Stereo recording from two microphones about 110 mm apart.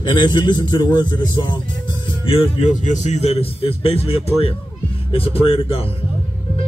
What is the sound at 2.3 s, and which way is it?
Speech, 60° left (ahead or behind).